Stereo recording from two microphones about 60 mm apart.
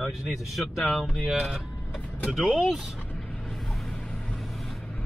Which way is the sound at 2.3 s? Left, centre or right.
Centre.